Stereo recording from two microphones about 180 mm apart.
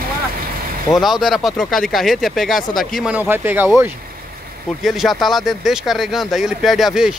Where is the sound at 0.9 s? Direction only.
Centre (ahead or behind).